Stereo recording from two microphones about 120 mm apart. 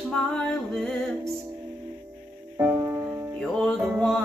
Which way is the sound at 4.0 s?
5° left (ahead or behind).